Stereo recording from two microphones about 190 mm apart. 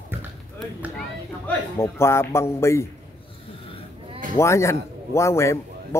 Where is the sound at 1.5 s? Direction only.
15° left (ahead or behind).